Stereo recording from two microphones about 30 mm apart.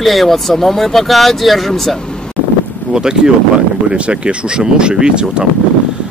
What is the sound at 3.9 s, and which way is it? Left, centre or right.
Speech, right.